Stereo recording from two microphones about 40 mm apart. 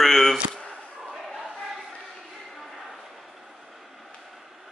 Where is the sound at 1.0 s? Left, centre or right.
Centre.